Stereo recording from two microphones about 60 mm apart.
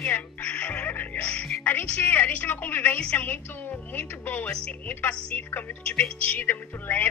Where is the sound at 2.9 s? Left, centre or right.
Left.